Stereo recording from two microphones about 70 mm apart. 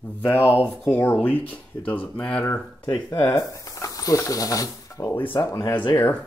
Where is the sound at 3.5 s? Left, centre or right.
Left.